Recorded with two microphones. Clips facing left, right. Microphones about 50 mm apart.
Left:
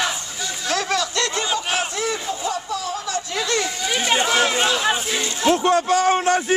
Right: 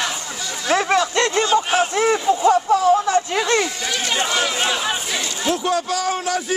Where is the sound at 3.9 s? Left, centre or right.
Centre.